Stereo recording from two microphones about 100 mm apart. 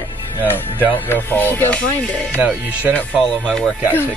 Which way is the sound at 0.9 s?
20° left (ahead or behind).